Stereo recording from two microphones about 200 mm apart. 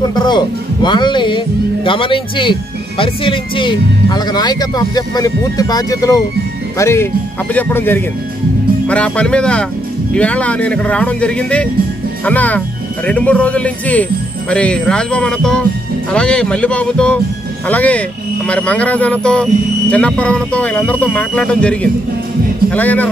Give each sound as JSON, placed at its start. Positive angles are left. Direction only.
{"t": 0.0, "sound": "a man's voice", "side_deg": 20}